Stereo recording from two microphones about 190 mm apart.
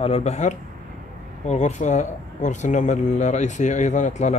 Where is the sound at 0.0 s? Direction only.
35° left (ahead or behind).